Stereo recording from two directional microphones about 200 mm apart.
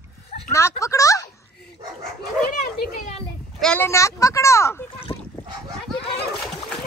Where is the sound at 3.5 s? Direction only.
5° left (ahead or behind).